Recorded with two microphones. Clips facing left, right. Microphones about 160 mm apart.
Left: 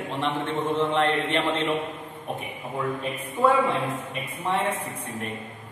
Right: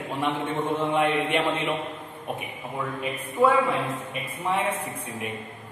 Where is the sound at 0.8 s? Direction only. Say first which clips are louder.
Even; 10° right (ahead or behind).